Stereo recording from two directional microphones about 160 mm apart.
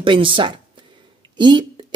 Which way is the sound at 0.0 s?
30° right (ahead or behind).